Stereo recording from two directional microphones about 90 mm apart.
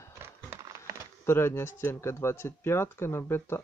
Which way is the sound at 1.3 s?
25° left (ahead or behind).